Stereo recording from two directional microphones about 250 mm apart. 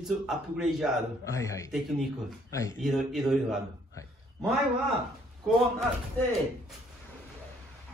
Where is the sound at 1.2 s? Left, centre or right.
Centre.